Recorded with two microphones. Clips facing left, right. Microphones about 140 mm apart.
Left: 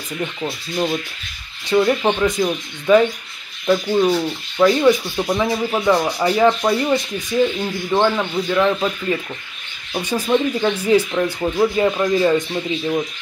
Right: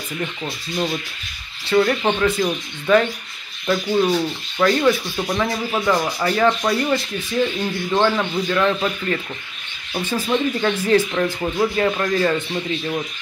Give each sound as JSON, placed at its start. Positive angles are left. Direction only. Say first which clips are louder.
{"t": 0.2, "sound": "speech", "louder": "left 4 dB", "side_deg": 15}
{"t": 4.0, "sound": "speech", "louder": "left 2 dB", "side_deg": 5}